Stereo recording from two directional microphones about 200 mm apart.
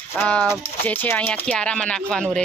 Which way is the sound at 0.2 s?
5° left (ahead or behind).